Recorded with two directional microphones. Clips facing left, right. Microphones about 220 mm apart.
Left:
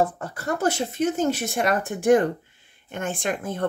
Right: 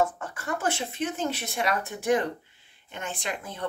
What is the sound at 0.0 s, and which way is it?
Speech, 35° left (ahead or behind).